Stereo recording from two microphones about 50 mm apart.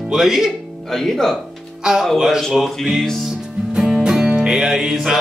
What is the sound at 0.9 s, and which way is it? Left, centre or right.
Speech, centre.